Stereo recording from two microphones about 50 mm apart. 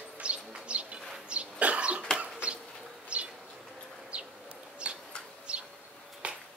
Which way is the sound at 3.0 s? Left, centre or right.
Right.